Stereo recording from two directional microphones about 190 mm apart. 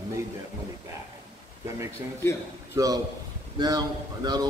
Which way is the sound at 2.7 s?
20° right (ahead or behind).